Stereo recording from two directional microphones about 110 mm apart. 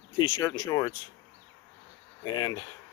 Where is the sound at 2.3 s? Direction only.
40° left (ahead or behind).